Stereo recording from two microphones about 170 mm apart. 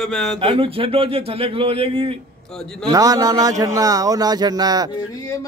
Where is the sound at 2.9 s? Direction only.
20° right (ahead or behind).